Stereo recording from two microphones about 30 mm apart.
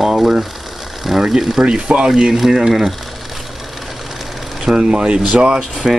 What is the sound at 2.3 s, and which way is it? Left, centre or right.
Speech, centre.